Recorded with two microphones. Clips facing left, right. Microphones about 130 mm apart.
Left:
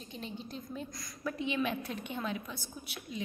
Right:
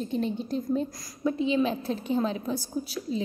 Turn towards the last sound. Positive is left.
turn(degrees=-35)  # may be behind; listen again after turning